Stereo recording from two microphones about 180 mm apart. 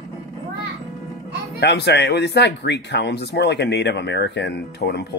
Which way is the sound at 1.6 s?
65° left (ahead or behind).